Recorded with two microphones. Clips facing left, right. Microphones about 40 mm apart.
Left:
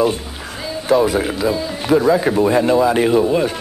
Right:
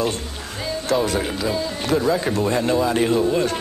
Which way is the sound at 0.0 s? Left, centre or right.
Centre.